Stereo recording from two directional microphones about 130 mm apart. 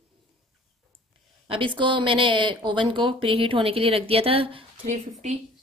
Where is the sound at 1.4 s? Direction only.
40° right (ahead or behind).